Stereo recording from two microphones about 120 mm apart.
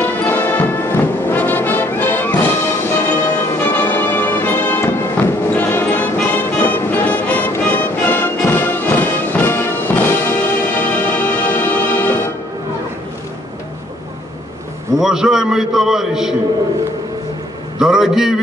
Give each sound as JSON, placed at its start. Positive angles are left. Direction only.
{"t": 0.0, "sound": "brass instrument", "side_deg": 15}
{"t": 3.6, "sound": "music", "side_deg": 15}
{"t": 15.0, "sound": "a man's voice", "side_deg": -5}
{"t": 17.7, "sound": "a man's voice", "side_deg": -5}